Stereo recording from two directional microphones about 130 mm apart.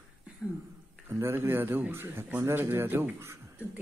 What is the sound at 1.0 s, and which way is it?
Speech, 20° right (ahead or behind).